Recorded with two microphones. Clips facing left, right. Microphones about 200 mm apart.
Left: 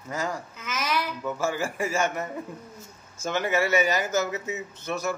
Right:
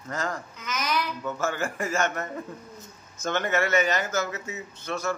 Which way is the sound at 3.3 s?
10° left (ahead or behind).